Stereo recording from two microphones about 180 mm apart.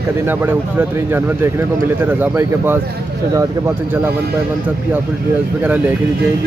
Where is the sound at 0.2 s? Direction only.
10° right (ahead or behind).